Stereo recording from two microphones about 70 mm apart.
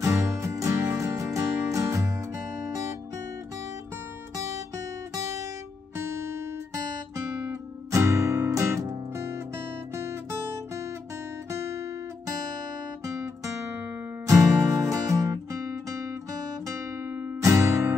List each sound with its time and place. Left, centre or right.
0.0 s music: right
5.9 s music: right
7.4 s music: right
11.5 s guitar: right
13.0 s guitar: right
14.3 s music: right
17.4 s guitar: right